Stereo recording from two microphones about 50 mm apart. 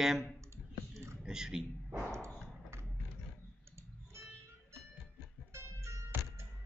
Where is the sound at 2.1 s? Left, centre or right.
Right.